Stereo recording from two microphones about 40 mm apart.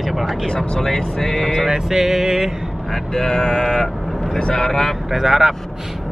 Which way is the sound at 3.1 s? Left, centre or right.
Centre.